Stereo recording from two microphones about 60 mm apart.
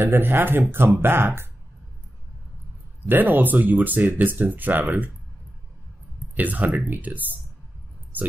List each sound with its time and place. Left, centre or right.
0.0 s speech: right
3.1 s speech: right
6.3 s speech: right